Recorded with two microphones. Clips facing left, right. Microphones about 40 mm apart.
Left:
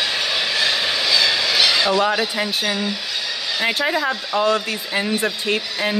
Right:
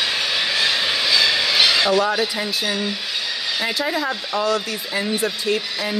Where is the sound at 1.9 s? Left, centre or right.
Left.